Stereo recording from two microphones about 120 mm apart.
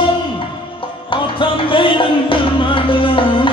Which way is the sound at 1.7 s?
45° left (ahead or behind).